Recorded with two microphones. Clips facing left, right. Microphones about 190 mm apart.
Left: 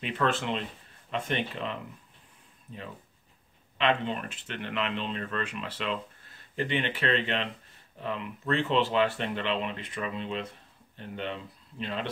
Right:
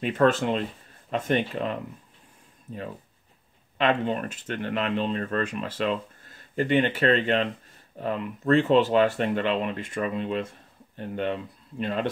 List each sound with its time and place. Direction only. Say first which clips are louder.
0.0 s speech: right 7 dB; 45° right (ahead or behind)
3.7 s speech: right 4 dB; 45° right (ahead or behind)